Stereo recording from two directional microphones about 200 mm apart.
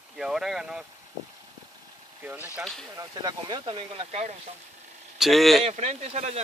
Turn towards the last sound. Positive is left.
turn(degrees=-35)  # may be behind; listen again after turning